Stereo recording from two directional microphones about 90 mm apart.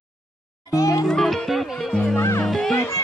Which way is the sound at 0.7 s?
40° left (ahead or behind).